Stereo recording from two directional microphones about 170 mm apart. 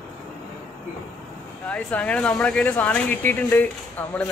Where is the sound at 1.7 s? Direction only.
5° left (ahead or behind).